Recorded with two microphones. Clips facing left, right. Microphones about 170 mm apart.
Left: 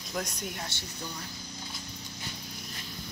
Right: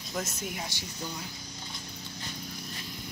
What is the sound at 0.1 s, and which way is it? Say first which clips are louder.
Speech: even; 5° right (ahead or behind).